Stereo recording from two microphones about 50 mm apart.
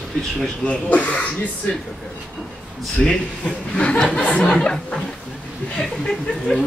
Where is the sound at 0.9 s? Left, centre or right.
Left.